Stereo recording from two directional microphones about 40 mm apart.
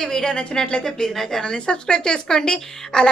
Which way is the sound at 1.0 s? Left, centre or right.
Centre.